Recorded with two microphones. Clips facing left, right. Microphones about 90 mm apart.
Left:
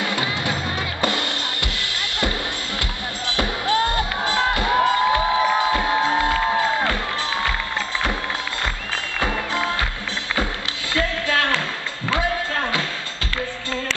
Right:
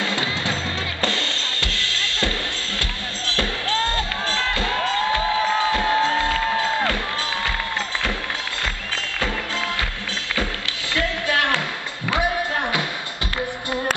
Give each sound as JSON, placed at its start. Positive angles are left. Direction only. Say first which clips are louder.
{"t": 0.0, "sound": "music", "louder": "left 1 dB", "side_deg": 15}
{"t": 1.0, "sound": "drum kit", "louder": "left 2 dB", "side_deg": 15}
{"t": 3.3, "sound": "music", "louder": "left 3 dB", "side_deg": 20}
{"t": 8.9, "sound": "music", "louder": "left 2 dB", "side_deg": 20}
{"t": 11.0, "sound": "music", "louder": "left 1 dB", "side_deg": -20}